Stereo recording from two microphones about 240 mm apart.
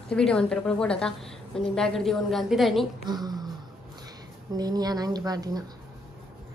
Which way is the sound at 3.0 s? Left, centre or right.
Centre.